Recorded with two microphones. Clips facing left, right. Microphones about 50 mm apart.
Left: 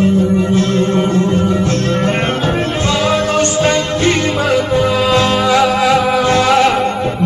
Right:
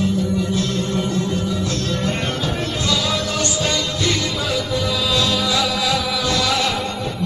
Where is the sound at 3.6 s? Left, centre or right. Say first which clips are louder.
Left 8 dB; left.